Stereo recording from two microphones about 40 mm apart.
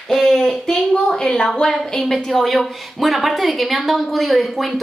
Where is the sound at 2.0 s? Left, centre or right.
Centre.